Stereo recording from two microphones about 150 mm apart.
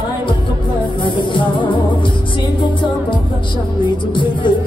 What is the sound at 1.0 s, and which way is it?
Music, 30° left (ahead or behind).